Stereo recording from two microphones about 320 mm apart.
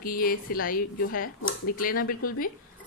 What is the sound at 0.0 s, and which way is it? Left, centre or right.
Speech, left.